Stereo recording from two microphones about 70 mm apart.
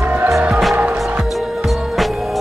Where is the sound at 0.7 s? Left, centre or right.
Right.